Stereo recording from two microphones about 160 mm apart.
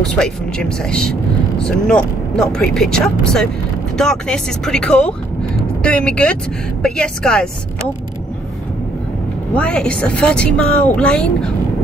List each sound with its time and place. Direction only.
0.0 s a woman's voice: 5° left (ahead or behind)
9.5 s a woman's voice: 5° left (ahead or behind)